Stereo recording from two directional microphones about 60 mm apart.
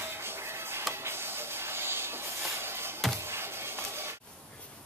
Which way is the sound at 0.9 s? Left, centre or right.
Right.